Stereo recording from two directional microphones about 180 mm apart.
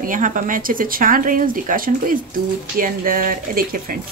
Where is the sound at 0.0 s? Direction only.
45° right (ahead or behind).